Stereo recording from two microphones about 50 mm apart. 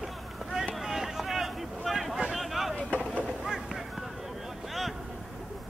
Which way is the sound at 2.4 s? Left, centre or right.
Centre.